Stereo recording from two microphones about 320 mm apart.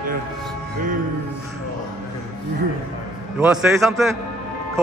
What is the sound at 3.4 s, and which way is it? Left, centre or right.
Speech, centre.